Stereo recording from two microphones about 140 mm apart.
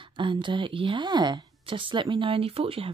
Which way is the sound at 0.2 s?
35° right (ahead or behind).